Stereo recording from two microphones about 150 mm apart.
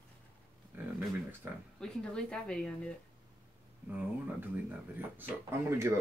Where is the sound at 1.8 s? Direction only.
5° left (ahead or behind).